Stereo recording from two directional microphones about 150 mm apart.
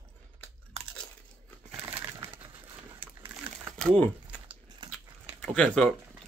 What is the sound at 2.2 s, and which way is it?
Bird, 35° right (ahead or behind).